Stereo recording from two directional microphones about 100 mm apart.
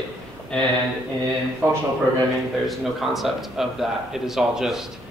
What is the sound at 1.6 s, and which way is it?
Speech, 25° right (ahead or behind).